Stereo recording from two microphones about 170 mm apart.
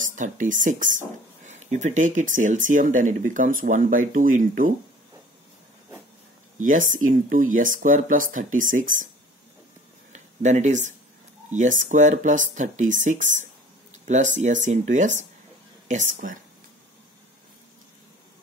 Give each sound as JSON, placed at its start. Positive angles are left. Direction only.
{"t": 0.0, "sound": "speech", "side_deg": -50}
{"t": 6.6, "sound": "speech", "side_deg": -50}
{"t": 10.1, "sound": "speech", "side_deg": -45}